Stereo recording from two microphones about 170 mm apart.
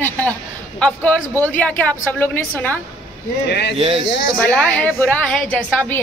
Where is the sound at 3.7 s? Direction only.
35° right (ahead or behind).